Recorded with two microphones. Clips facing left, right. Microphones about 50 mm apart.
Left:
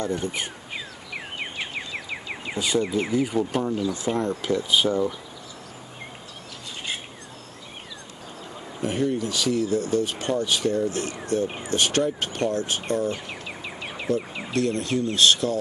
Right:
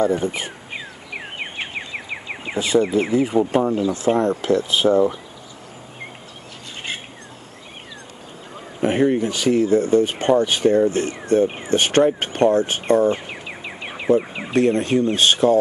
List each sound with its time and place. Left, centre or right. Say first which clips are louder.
0.0 s a sound: right 7 dB; right
4.6 s speech: right 5 dB; centre
8.8 s speech: right 7 dB; right